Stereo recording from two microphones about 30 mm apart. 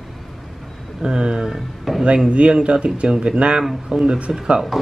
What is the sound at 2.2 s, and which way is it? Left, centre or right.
Speech, right.